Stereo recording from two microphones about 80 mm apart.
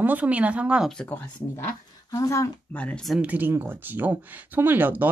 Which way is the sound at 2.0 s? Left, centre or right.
Left.